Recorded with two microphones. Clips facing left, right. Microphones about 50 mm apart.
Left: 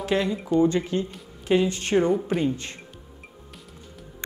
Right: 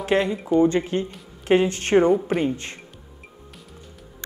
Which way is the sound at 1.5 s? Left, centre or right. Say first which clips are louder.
Right 3 dB; right.